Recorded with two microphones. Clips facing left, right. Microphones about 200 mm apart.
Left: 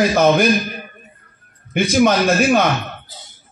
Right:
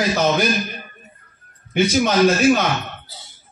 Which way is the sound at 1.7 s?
50° left (ahead or behind).